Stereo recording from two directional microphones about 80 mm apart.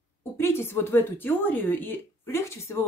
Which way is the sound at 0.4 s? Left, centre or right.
Left.